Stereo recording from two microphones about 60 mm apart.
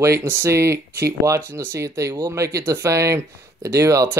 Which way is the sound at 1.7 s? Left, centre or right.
Right.